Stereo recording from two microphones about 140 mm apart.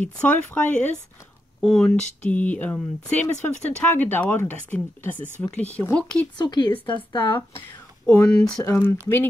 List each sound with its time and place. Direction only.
0.0 s speech: 10° left (ahead or behind)
6.3 s speech: 30° left (ahead or behind)
8.1 s speech: 10° left (ahead or behind)